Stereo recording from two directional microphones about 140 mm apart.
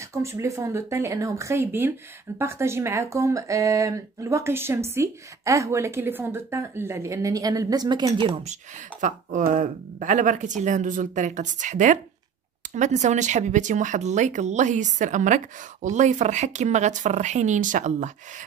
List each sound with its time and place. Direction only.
0.1 s speech: 20° right (ahead or behind)
9.0 s speech: 65° right (ahead or behind)